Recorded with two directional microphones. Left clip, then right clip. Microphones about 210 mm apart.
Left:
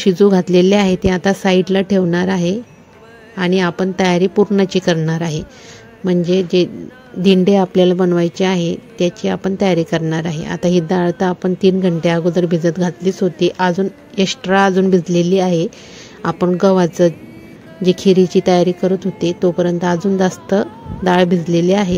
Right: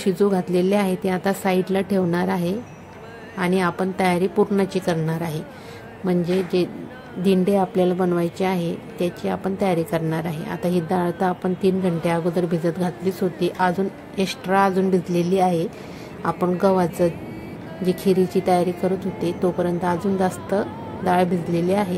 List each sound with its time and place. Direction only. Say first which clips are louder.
0.0 s speech: left 8 dB; 40° left (ahead or behind)